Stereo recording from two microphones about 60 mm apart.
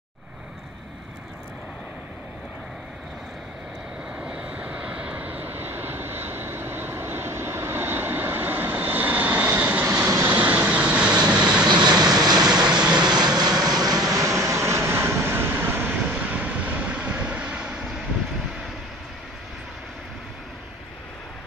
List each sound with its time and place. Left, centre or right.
4.2 s vehicle: centre
9.8 s vehicle: right
10.2 s vehicle: right; by 13.4 s centre
13.7 s vehicle: right
14.1 s vehicle: right
16.1 s vehicle: right